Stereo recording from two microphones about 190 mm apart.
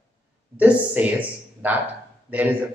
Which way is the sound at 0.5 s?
10° right (ahead or behind).